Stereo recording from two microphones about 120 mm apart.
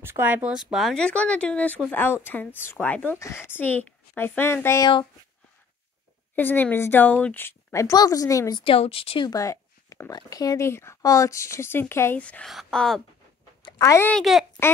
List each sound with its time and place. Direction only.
0.0 s a woman's voice: 20° right (ahead or behind); by 4.8 s 20° left (ahead or behind)
6.3 s speech: 15° left (ahead or behind)
8.5 s speech: 50° left (ahead or behind)
9.3 s a woman's voice: 25° left (ahead or behind); by 12.4 s 10° left (ahead or behind)
12.4 s speech: centre (ahead or behind)
13.6 s a sound: 40° left (ahead or behind)
13.8 s speech: 20° left (ahead or behind)
14.1 s speech: centre (ahead or behind)